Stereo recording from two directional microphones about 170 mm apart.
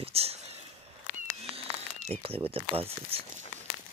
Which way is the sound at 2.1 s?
35° right (ahead or behind).